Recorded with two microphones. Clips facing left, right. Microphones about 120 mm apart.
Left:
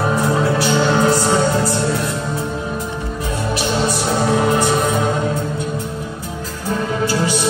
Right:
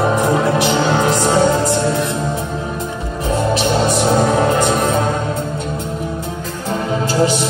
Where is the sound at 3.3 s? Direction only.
25° right (ahead or behind).